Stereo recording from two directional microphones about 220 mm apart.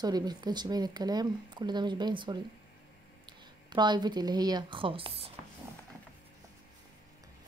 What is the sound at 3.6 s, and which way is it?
Speech, 20° right (ahead or behind).